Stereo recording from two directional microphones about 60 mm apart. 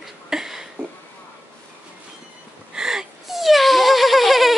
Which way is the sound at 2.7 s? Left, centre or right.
Centre.